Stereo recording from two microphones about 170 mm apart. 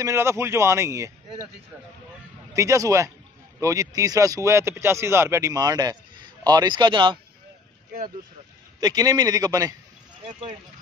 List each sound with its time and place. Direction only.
0.0 s speech: 15° right (ahead or behind)
2.5 s speech: 20° right (ahead or behind)
8.7 s speech: 20° right (ahead or behind)